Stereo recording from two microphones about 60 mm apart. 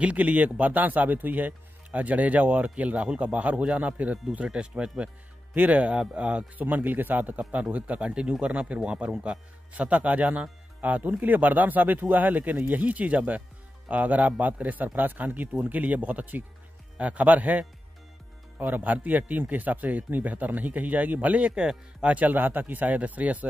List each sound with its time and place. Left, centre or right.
0.0 s speech: right
18.7 s speech: right
22.1 s speech: right